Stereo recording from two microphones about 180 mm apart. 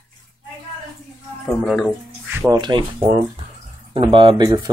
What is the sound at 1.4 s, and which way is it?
Speech, 5° left (ahead or behind).